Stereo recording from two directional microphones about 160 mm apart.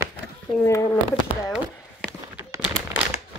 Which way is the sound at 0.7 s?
20° left (ahead or behind).